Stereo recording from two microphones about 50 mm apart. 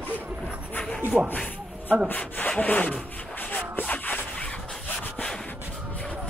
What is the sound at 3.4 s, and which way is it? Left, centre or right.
Shuffle, left.